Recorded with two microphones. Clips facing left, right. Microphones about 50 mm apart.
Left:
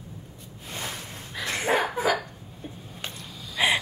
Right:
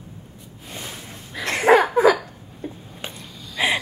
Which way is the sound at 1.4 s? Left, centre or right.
Right.